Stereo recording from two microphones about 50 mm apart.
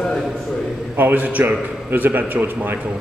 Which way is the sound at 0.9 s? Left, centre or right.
Right.